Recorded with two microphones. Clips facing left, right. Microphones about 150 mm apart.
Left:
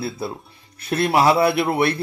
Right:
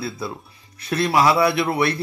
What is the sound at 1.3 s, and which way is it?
Music, 55° left (ahead or behind).